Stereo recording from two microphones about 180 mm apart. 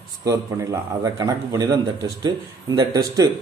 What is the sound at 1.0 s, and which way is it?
Speech, 20° right (ahead or behind).